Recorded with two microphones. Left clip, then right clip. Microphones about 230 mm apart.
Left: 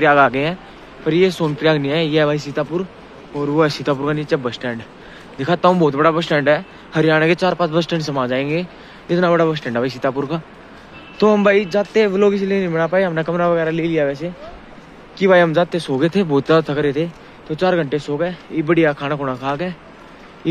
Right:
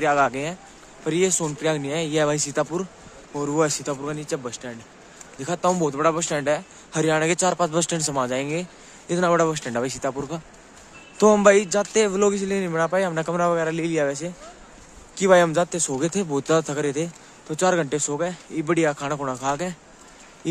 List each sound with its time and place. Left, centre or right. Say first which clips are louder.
0.0 s a man's voice: left 7 dB; centre
11.1 s speech: left 2 dB; right